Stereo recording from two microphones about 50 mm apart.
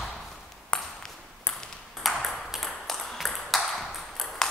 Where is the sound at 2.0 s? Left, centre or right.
Centre.